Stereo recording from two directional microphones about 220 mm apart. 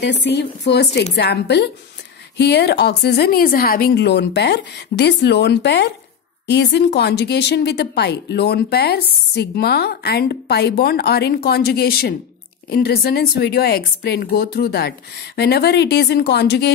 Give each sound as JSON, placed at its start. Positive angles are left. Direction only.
{"t": 0.0, "sound": "speech", "side_deg": 50}